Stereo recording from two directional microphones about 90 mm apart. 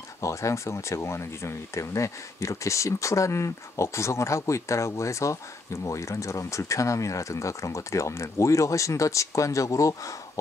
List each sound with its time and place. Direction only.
0.2 s speech: 35° left (ahead or behind)